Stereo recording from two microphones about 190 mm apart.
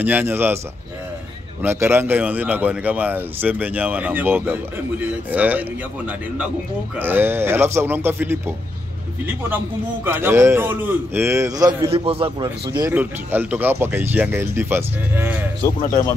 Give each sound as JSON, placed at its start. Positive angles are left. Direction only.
{"t": 0.0, "sound": "speech", "side_deg": -10}
{"t": 1.6, "sound": "speech", "side_deg": -10}
{"t": 11.9, "sound": "a man's voice", "side_deg": -30}
{"t": 12.6, "sound": "speech", "side_deg": -20}
{"t": 15.6, "sound": "speech", "side_deg": 20}